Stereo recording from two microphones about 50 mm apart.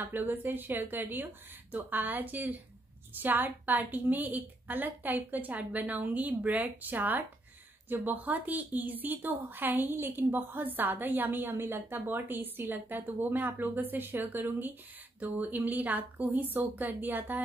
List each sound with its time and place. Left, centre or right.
0.0 s a woman's voice: right